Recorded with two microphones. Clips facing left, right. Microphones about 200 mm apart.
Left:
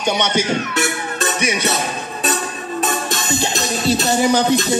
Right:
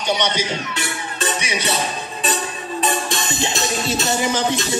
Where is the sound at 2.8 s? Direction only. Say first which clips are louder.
Even; 40° left (ahead or behind).